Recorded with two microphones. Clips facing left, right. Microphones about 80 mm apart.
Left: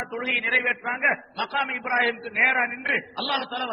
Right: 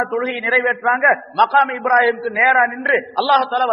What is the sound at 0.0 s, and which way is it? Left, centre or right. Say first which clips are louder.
A man's voice: right 9 dB; right.